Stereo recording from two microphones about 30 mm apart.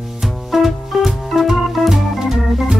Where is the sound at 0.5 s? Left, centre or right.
Centre.